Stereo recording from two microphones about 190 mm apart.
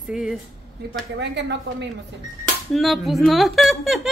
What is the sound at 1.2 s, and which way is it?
Speech, 65° right (ahead or behind).